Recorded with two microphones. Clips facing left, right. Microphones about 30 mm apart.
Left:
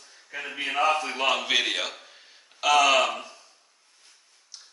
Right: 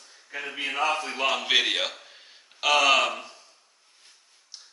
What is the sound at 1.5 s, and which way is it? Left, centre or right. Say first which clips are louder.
A man's voice: right 2 dB; centre.